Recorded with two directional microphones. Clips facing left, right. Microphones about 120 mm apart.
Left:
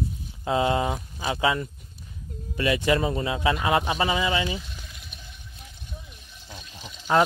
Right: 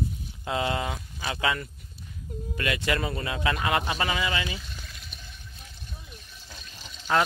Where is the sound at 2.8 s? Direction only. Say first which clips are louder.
Left 5 dB; 20° left (ahead or behind).